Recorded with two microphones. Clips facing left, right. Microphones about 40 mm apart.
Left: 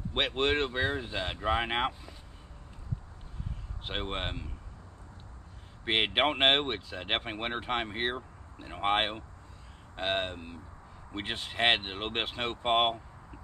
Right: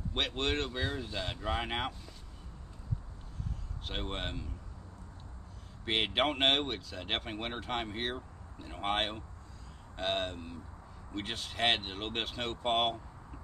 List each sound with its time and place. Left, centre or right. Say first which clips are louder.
0.1 s speech: left 5 dB; left
3.8 s speech: left 4 dB; left
5.9 s speech: left 3 dB; left